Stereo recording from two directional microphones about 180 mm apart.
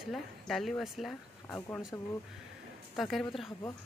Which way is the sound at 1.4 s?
10° left (ahead or behind).